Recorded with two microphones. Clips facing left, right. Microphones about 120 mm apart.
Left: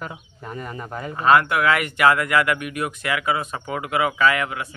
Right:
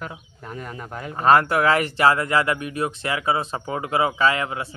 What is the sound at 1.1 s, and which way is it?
Speech, 40° right (ahead or behind).